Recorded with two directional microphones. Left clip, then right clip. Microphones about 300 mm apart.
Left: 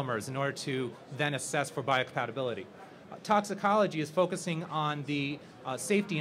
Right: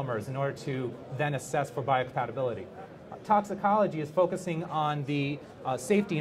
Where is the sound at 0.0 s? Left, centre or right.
Centre.